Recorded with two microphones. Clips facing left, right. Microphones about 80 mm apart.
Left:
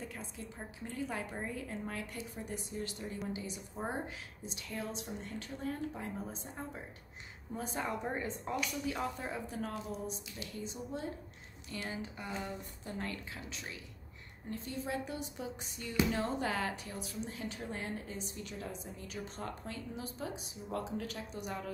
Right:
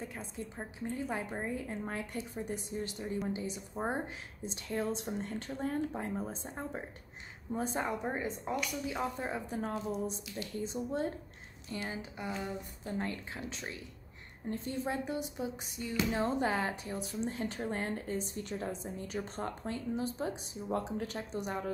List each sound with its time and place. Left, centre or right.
0.1 s a woman's voice: right
11.7 s a woman's voice: right
15.1 s a woman's voice: centre